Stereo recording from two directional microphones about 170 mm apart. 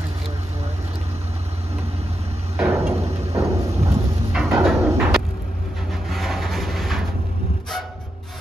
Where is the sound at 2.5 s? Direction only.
15° right (ahead or behind).